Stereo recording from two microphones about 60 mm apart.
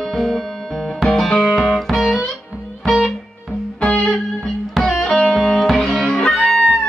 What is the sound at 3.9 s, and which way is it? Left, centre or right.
Music, centre.